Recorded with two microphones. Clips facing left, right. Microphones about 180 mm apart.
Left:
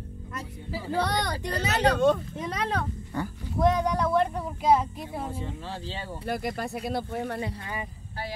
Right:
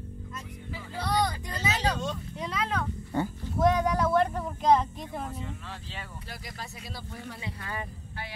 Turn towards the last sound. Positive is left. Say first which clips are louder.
# left 10 dB
turn(degrees=60)  # may be behind; listen again after turning